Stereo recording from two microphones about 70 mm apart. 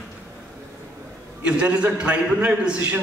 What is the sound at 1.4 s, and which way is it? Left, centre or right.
A man's voice, centre.